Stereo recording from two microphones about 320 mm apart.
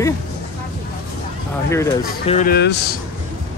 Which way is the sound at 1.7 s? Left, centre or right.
Centre.